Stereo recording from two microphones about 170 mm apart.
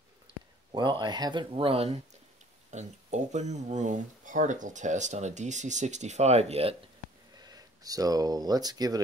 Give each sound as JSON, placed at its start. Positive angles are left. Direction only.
{"t": 0.7, "sound": "speech", "side_deg": -25}
{"t": 7.3, "sound": "speech", "side_deg": -20}